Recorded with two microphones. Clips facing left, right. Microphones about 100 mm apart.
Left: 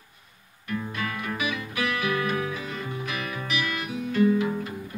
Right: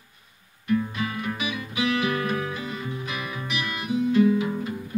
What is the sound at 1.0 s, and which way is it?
Music, 15° right (ahead or behind).